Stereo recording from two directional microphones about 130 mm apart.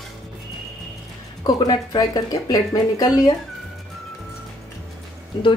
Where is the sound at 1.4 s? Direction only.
35° left (ahead or behind).